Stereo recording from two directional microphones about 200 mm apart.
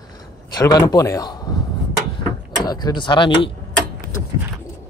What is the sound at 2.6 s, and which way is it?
Speech, 20° left (ahead or behind).